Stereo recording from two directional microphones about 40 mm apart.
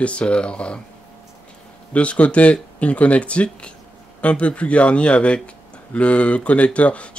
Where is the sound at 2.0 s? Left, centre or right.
Left.